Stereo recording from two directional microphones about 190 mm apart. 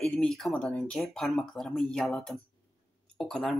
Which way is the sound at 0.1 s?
5° left (ahead or behind).